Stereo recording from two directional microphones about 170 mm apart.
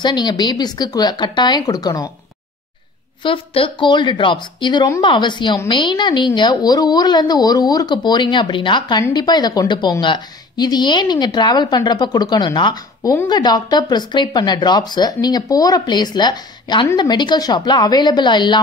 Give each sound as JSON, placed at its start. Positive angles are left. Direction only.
{"t": 0.0, "sound": "speech", "side_deg": 25}
{"t": 3.3, "sound": "speech", "side_deg": 30}